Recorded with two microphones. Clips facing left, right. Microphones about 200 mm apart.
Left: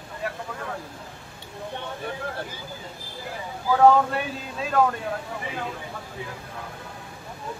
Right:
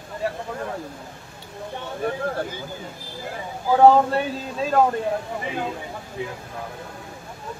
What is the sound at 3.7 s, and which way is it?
Speech, 30° right (ahead or behind).